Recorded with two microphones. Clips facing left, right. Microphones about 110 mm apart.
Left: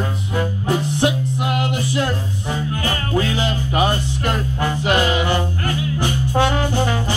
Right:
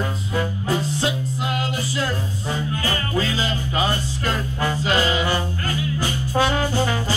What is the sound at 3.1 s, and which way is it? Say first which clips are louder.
Music: left 5 dB; 60° left (ahead or behind).